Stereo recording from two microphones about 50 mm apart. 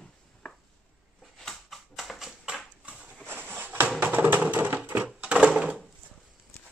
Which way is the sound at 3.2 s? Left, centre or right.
Right.